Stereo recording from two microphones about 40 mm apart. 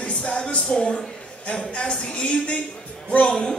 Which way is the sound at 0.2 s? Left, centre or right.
Left.